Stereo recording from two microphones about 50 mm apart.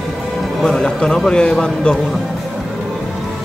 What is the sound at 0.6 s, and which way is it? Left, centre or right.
A man's voice, centre.